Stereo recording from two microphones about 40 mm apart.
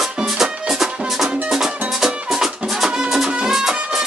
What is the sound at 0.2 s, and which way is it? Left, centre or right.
Music, centre.